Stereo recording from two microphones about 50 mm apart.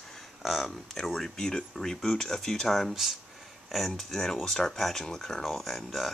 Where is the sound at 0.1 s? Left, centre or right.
Centre.